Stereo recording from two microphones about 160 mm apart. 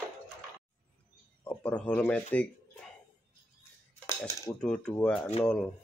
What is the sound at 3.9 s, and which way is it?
Dishes, 15° left (ahead or behind).